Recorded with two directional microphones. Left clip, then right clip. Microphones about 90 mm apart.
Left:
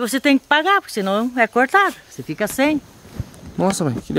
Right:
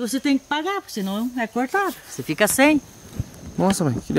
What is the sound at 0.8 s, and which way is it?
Speech, 30° left (ahead or behind).